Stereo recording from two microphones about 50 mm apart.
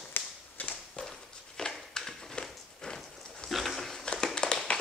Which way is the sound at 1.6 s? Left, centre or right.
Centre.